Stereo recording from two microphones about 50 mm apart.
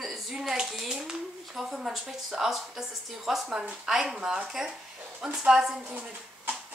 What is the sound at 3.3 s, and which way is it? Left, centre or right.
Speech, centre.